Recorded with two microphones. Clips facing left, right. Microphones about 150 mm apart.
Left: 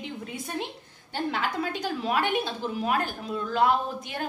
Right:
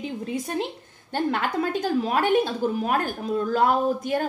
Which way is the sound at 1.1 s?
50° right (ahead or behind).